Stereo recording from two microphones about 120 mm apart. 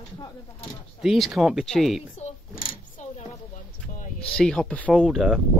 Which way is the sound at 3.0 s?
85° left.